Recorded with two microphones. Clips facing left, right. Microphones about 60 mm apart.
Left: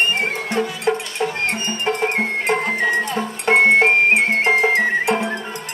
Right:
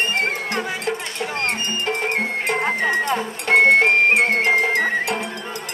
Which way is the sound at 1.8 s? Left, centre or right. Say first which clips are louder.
Left 4 dB; left.